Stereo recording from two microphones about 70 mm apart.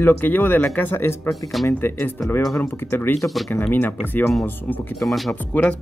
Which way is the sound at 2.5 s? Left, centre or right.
Left.